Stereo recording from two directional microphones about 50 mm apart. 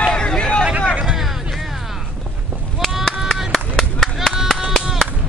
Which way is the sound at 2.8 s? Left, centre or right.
Centre.